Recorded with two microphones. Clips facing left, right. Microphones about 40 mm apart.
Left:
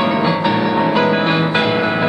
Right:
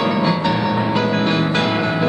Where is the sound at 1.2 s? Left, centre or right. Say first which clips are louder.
Left 2 dB; centre.